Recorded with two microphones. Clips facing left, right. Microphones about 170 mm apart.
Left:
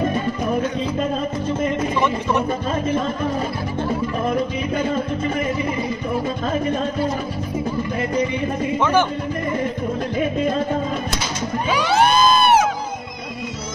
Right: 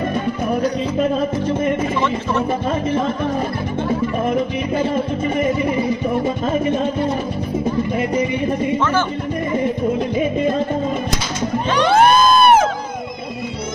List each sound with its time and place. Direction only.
11.9 s music: 55° right (ahead or behind)